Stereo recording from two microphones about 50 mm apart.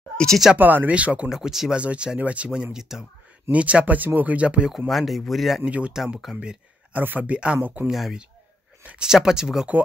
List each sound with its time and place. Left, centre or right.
0.6 s speech: right
0.9 s speech: right
1.3 s speech: centre
1.8 s speech: right
2.8 s speech: centre
3.5 s speech: right
4.8 s speech: centre
5.7 s speech: right
7.0 s speech: right
8.8 s speech: centre